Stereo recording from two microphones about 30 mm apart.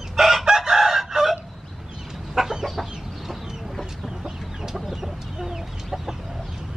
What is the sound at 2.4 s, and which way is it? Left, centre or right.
Chicken, centre.